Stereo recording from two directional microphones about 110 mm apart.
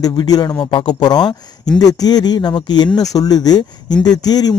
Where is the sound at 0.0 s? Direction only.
35° left (ahead or behind).